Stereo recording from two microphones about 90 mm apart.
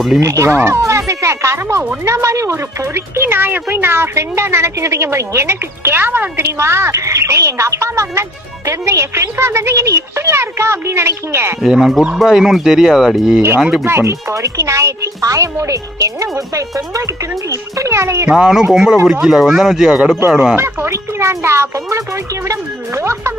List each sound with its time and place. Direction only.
0.2 s a child's voice: 35° right (ahead or behind)
11.6 s speech: 5° right (ahead or behind)
13.8 s a child's voice: 30° right (ahead or behind)
18.3 s speech: 10° right (ahead or behind)
20.2 s a woman's voice: 25° right (ahead or behind)